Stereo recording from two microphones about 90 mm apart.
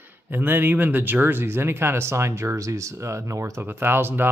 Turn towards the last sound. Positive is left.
turn(degrees=-25)  # may be behind; listen again after turning